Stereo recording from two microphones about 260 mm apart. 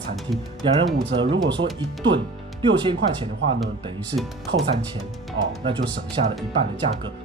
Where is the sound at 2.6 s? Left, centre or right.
Centre.